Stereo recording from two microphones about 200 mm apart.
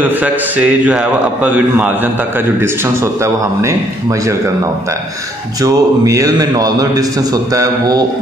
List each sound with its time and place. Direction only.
0.2 s a man's voice: 5° right (ahead or behind)
3.0 s a man's voice: 15° right (ahead or behind)
5.6 s a man's voice: 15° right (ahead or behind)